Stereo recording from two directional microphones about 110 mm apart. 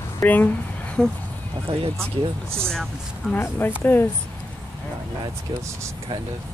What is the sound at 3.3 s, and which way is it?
Speech, 15° left (ahead or behind).